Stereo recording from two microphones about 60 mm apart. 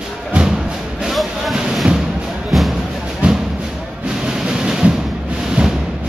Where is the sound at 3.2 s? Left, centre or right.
Right.